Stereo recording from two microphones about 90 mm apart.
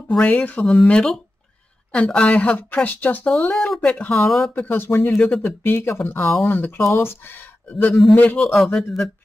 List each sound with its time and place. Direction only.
0.1 s a woman's voice: 15° left (ahead or behind)
3.3 s a woman's voice: 5° left (ahead or behind)
4.6 s speech: 25° left (ahead or behind)
5.1 s a woman's voice: 5° left (ahead or behind)
5.4 s speech: 25° left (ahead or behind)
8.6 s speech: 5° left (ahead or behind)